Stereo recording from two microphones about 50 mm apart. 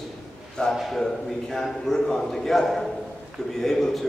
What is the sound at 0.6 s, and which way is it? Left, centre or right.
A man's voice, centre.